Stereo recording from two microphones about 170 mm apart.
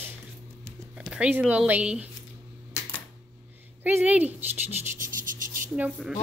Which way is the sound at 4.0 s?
10° right (ahead or behind).